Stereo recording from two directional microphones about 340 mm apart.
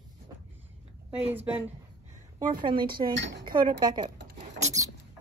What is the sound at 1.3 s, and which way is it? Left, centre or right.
A woman's voice, centre.